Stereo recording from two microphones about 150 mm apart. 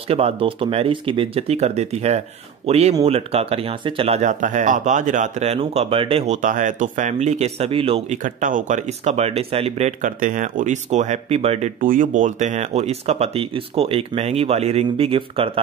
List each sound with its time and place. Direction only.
0.1 s speech: 40° right (ahead or behind)
8.2 s speech: 60° right (ahead or behind); by 11.7 s 45° right (ahead or behind)
11.8 s speech: 65° right (ahead or behind); by 15.6 s 40° right (ahead or behind)